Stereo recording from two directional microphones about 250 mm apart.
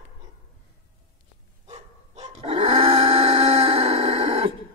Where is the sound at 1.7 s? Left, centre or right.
Right.